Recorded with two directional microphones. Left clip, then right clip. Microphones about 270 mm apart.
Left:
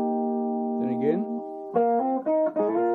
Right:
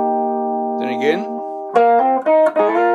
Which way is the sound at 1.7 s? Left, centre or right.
Centre.